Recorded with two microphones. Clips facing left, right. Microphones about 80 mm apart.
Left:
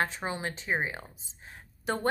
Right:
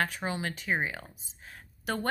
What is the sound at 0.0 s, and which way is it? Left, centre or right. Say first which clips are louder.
A woman's voice: even; left.